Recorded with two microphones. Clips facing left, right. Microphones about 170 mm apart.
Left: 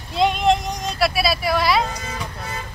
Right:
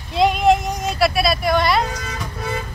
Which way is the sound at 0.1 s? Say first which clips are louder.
Right 3 dB; centre (ahead or behind).